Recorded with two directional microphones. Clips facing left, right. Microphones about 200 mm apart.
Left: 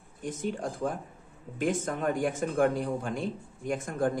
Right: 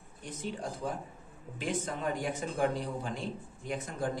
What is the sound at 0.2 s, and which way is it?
Speech, 50° left (ahead or behind).